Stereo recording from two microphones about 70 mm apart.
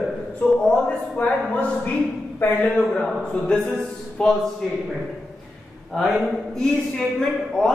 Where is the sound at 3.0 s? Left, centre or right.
Centre.